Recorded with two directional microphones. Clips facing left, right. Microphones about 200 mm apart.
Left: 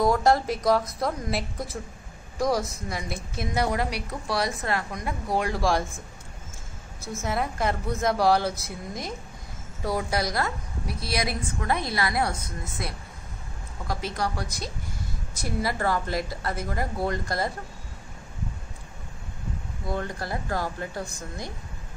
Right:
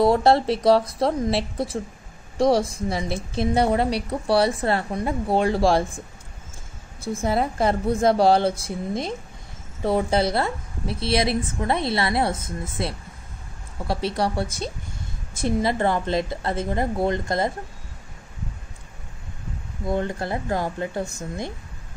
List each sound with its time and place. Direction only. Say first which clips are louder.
0.0 s a woman's voice: right 4 dB; 30° right (ahead or behind)
7.2 s a woman's voice: right 5 dB; 30° right (ahead or behind)
19.9 s a woman's voice: right 5 dB; 20° right (ahead or behind)